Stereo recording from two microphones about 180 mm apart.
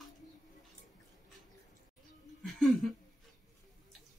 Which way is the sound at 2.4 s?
Centre (ahead or behind).